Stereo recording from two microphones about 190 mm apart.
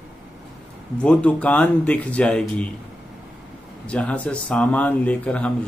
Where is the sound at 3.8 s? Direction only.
5° left (ahead or behind).